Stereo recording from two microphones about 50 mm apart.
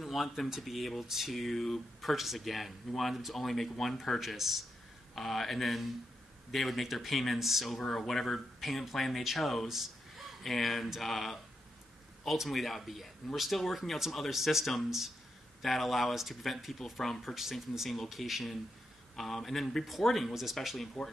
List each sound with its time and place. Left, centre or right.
0.0 s speech: centre
5.1 s speech: centre